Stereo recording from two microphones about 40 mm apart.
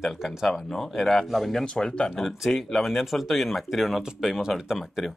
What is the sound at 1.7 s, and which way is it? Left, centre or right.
Speech, left.